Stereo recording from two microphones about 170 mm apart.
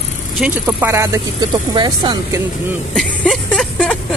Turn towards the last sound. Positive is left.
turn(degrees=5)  # may be behind; listen again after turning